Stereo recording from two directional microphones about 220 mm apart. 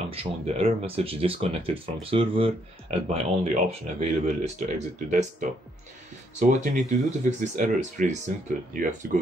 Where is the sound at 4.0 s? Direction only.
30° right (ahead or behind).